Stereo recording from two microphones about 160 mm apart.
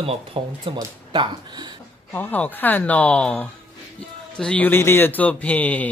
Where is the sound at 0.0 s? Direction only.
35° right (ahead or behind).